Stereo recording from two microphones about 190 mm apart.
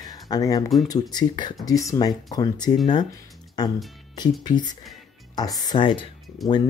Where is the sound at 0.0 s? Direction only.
20° left (ahead or behind).